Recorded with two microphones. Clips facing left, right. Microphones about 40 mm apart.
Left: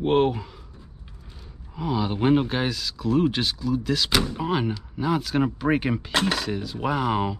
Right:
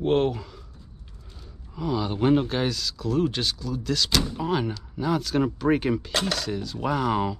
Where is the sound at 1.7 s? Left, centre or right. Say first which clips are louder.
Left 1 dB; centre.